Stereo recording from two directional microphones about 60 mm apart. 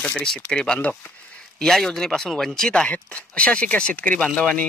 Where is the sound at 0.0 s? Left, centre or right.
Centre.